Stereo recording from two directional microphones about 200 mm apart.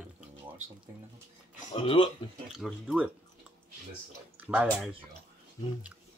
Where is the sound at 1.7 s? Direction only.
25° left (ahead or behind).